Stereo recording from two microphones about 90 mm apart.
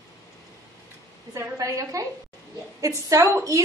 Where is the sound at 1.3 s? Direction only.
40° right (ahead or behind).